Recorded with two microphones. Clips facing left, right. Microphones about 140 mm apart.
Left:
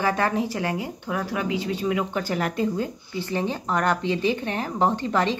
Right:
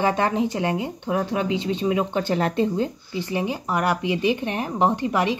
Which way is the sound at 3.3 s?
10° right (ahead or behind).